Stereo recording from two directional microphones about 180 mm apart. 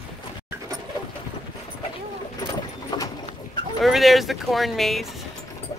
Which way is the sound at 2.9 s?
25° left (ahead or behind).